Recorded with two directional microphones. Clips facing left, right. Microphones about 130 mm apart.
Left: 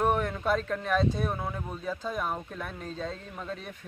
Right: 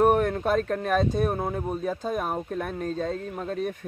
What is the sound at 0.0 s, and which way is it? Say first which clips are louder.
Speech: right 6 dB; 45° right (ahead or behind).